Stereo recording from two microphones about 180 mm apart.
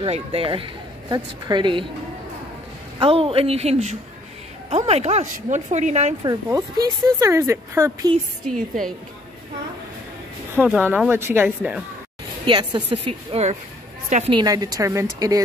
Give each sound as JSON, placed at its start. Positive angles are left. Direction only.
{"t": 0.0, "sound": "a woman's voice", "side_deg": -30}
{"t": 3.0, "sound": "speech", "side_deg": -30}
{"t": 6.2, "sound": "a woman's voice", "side_deg": -20}
{"t": 10.5, "sound": "speech", "side_deg": -10}
{"t": 12.4, "sound": "a woman's voice", "side_deg": -25}
{"t": 14.3, "sound": "a woman's voice", "side_deg": -20}